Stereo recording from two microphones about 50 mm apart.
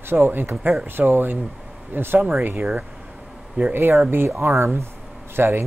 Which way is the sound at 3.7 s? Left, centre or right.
Right.